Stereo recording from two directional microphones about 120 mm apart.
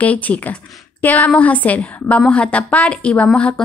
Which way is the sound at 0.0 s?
10° left (ahead or behind).